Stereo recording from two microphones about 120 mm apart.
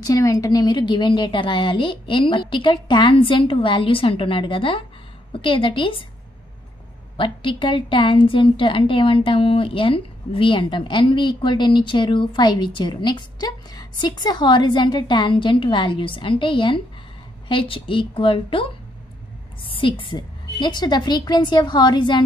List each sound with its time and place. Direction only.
0.0 s a woman's voice: 25° left (ahead or behind); by 6.0 s 45° left (ahead or behind)
7.2 s a woman's voice: 45° left (ahead or behind)
19.7 s a woman's voice: 45° left (ahead or behind)